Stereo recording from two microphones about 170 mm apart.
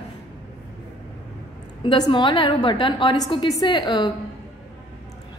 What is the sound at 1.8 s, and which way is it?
A woman's voice, 30° left (ahead or behind).